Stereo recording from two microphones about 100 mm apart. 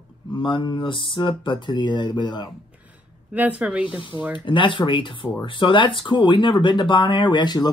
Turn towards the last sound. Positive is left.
turn(degrees=45)  # may be behind; listen again after turning